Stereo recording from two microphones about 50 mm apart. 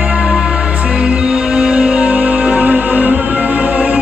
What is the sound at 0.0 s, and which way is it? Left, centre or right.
Music, right.